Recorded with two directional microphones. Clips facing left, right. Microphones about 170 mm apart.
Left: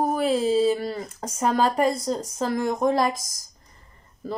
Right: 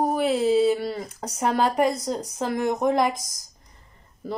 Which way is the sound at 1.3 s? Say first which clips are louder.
Even; 15° right (ahead or behind).